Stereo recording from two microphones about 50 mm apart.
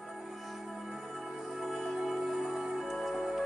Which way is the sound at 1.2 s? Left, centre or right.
Centre.